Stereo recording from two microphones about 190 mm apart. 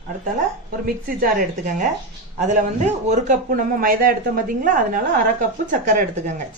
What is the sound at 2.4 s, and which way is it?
A man's voice, 40° right (ahead or behind).